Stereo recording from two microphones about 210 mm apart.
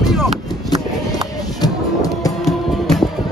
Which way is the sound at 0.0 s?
Centre (ahead or behind).